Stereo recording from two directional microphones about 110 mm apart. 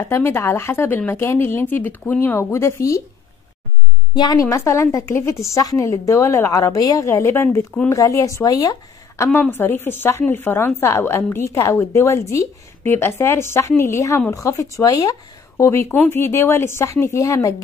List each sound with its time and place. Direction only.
0.1 s a woman's voice: 20° left (ahead or behind)
4.1 s a woman's voice: 40° left (ahead or behind)
9.3 s a woman's voice: 15° left (ahead or behind)